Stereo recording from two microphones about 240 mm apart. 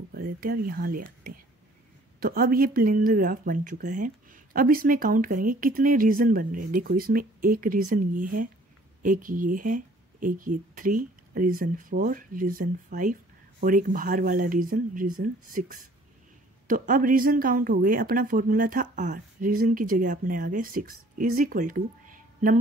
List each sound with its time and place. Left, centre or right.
0.1 s speech: right